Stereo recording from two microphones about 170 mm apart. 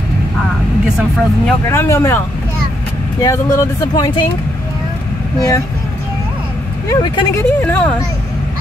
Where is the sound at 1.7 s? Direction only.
15° left (ahead or behind).